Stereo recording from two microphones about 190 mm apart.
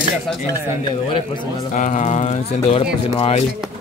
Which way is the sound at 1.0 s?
25° left (ahead or behind).